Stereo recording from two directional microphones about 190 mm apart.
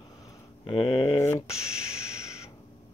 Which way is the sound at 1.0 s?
20° left (ahead or behind).